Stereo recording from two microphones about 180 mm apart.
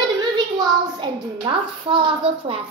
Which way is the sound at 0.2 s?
25° right (ahead or behind).